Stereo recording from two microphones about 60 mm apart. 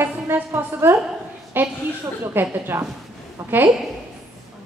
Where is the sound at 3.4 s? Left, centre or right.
Right.